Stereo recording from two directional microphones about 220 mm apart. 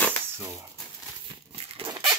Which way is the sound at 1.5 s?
25° right (ahead or behind).